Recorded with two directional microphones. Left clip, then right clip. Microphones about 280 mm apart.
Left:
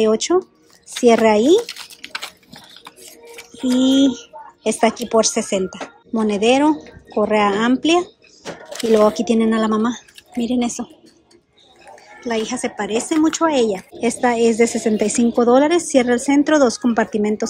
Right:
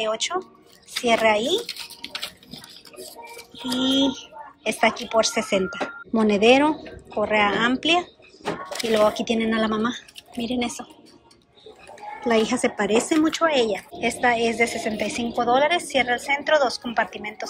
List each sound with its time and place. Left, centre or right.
0.0 s speech: left
1.0 s typing: centre
3.5 s speech: centre
12.2 s speech: centre